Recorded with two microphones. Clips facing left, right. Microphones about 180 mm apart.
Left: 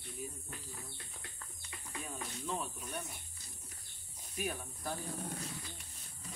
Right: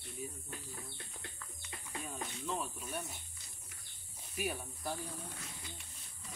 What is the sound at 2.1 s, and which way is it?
Cricket, centre (ahead or behind).